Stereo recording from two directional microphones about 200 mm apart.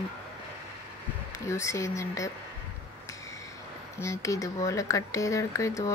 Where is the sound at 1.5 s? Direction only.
15° left (ahead or behind).